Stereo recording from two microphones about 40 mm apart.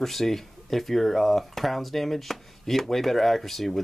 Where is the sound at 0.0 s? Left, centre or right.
Centre.